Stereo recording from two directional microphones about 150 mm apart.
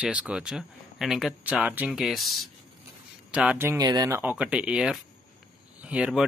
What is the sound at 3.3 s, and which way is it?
Speech, 10° right (ahead or behind).